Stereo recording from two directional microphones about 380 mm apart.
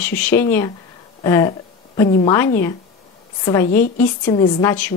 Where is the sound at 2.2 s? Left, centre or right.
Centre.